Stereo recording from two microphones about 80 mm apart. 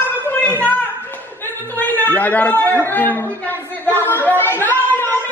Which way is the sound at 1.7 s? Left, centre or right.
Left.